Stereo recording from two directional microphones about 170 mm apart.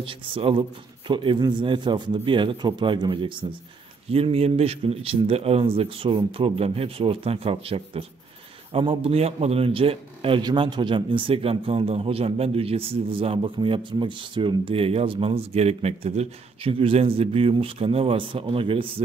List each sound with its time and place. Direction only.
0.0 s a man's voice: 30° right (ahead or behind)